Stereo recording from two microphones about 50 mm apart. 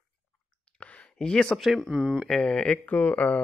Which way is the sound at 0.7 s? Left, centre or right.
Left.